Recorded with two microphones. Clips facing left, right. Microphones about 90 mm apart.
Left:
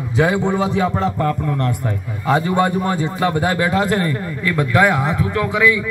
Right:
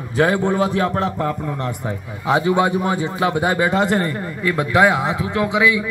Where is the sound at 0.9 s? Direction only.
15° right (ahead or behind).